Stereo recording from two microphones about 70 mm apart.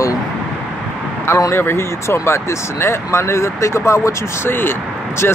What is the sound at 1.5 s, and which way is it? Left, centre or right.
Speech, left.